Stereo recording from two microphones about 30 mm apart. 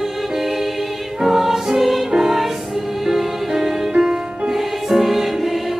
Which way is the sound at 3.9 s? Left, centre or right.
Centre.